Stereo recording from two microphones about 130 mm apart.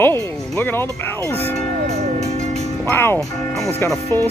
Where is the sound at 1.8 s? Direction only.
55° right (ahead or behind).